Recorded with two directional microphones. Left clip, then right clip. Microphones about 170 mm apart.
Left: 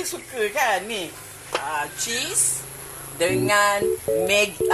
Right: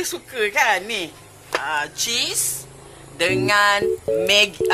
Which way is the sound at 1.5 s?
30° right (ahead or behind).